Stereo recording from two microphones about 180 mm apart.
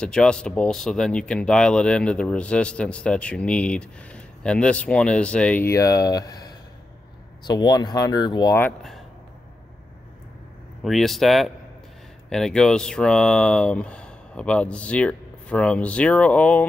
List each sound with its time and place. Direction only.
0.0 s speech: 5° left (ahead or behind); by 8.5 s 25° left (ahead or behind)
8.5 s speech: 10° left (ahead or behind)
10.8 s speech: centre (ahead or behind)